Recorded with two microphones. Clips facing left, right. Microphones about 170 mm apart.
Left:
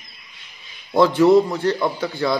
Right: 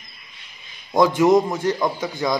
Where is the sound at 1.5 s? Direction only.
15° right (ahead or behind).